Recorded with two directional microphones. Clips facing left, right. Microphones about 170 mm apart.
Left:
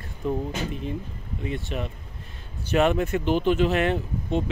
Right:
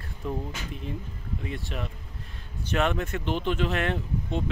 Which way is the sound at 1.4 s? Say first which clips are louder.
Left 6 dB; centre (ahead or behind).